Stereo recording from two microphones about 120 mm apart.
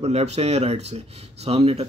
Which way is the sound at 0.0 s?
60° right (ahead or behind).